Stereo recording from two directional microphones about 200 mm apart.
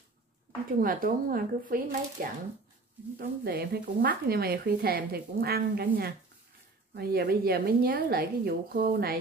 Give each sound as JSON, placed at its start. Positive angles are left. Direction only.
{"t": 0.7, "sound": "speech", "side_deg": -45}